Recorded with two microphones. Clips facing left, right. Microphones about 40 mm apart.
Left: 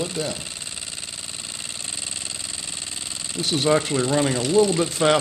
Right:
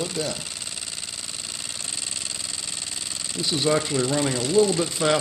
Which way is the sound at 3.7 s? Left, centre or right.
Left.